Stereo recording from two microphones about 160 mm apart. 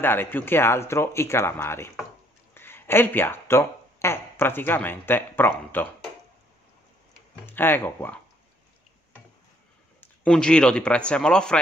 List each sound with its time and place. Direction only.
0.0 s speech: 15° left (ahead or behind)
7.4 s speech: 15° left (ahead or behind)
9.9 s a man's voice: 5° left (ahead or behind)